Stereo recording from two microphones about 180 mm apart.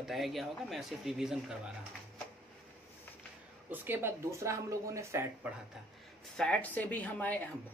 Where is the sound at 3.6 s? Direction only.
10° right (ahead or behind).